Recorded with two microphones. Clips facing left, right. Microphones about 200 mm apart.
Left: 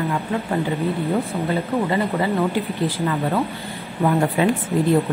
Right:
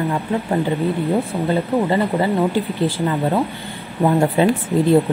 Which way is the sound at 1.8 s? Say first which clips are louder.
Right 3 dB; 30° right (ahead or behind).